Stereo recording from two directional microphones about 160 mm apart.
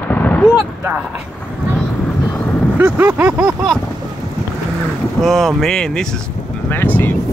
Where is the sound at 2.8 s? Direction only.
10° right (ahead or behind).